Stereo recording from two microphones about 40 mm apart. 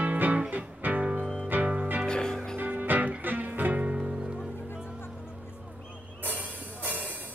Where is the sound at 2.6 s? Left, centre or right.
Right.